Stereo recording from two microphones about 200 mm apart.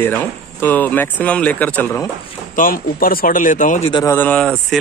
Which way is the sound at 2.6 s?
45° left (ahead or behind).